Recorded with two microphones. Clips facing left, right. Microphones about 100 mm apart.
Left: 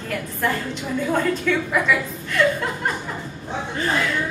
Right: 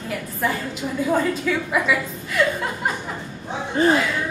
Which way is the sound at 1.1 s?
5° right (ahead or behind).